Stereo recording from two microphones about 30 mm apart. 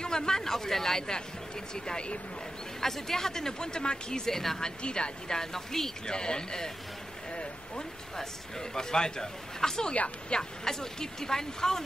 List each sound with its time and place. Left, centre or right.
0.0 s speech: left
1.9 s a woman's voice: left
2.8 s speech: centre
4.3 s speech: centre
4.6 s a woman's voice: left
5.3 s speech: centre
6.0 s speech: left
8.2 s speech: left